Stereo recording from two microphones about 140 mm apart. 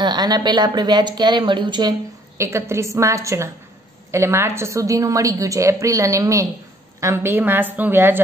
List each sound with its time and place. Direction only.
0.0 s a woman's voice: 30° right (ahead or behind); by 8.2 s 15° right (ahead or behind)